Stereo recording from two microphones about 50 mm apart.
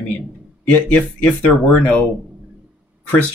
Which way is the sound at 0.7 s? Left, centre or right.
Left.